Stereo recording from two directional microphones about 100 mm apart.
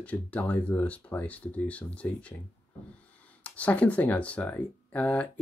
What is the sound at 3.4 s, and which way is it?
Speech, 15° left (ahead or behind).